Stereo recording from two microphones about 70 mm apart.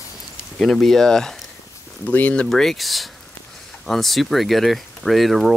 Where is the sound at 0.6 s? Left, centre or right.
Centre.